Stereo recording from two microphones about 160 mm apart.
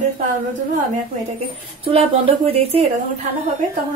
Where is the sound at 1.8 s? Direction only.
35° right (ahead or behind).